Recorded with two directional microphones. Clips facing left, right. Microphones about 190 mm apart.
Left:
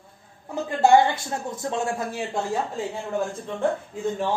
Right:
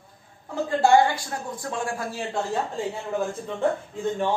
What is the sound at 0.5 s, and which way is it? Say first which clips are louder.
Speech: left 1 dB; 20° left (ahead or behind).